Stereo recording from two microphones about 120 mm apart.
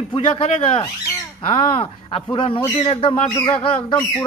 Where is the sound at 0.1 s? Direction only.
45° left (ahead or behind).